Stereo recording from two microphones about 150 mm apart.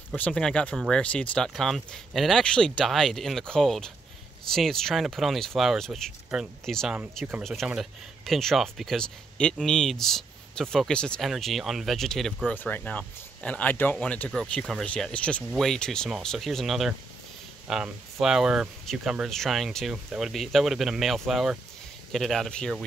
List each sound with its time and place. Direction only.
0.1 s speech: 5° left (ahead or behind)
12.5 s speech: 10° left (ahead or behind)